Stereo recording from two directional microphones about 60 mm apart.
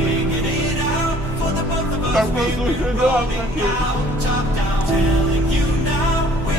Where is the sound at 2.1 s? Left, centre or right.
Centre.